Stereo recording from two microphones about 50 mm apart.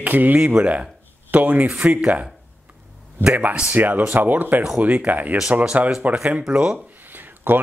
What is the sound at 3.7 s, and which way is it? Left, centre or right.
Speech, right.